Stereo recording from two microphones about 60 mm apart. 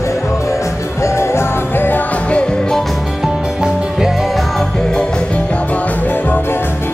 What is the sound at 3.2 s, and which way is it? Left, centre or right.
Music, centre.